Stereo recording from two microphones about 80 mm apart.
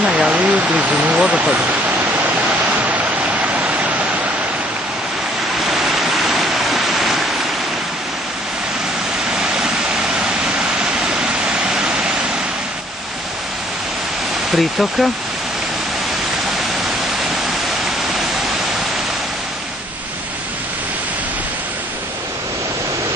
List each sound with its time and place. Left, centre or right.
0.0 s speech: centre
2.8 s a sound: centre
5.7 s waterfall: centre
10.4 s waterfall: centre
14.5 s speech: centre